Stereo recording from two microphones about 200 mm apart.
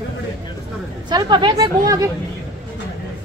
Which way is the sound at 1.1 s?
20° right (ahead or behind).